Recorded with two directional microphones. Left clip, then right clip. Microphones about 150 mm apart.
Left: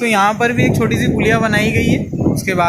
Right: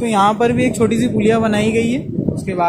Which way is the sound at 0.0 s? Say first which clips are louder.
Left 1 dB; 15° right (ahead or behind).